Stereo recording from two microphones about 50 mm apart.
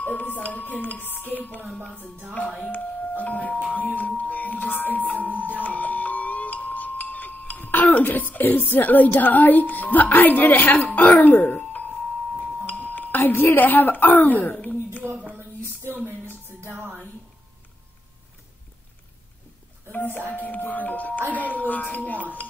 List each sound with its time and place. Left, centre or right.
0.0 s speech: left
2.6 s speech: left
5.6 s music: left
12.6 s speech: left
15.3 s a sound: right
16.4 s music: right
19.9 s speech: left